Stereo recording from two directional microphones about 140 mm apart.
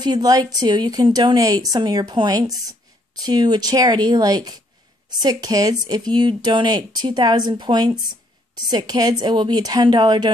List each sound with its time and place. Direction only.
0.0 s speech: 30° right (ahead or behind)